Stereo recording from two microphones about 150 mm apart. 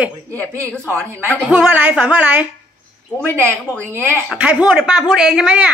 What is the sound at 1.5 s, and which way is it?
Speech, 10° right (ahead or behind).